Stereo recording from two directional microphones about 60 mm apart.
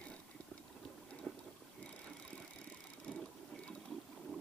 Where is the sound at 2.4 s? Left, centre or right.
Centre.